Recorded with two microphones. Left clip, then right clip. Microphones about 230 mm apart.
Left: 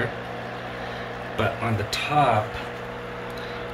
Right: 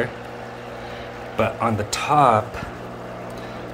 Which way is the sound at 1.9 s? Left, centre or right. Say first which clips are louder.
Right 4 dB; centre.